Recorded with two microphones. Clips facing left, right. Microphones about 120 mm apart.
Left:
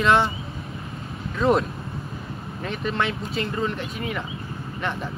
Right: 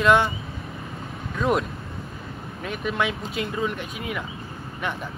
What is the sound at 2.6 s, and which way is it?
Speech, 5° right (ahead or behind).